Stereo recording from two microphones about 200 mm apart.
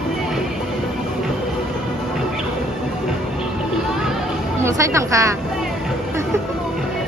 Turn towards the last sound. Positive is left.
turn(degrees=-15)  # may be behind; listen again after turning